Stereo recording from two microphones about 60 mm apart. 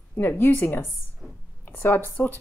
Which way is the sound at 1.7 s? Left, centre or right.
Left.